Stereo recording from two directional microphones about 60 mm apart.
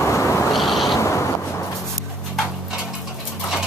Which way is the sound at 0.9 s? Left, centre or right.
Left.